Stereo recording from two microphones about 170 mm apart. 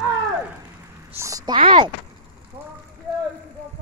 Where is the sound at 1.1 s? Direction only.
20° right (ahead or behind).